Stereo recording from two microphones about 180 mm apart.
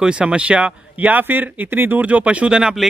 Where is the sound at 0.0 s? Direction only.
5° right (ahead or behind).